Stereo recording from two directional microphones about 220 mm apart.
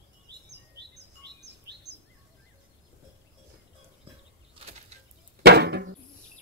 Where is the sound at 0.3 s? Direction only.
50° right (ahead or behind).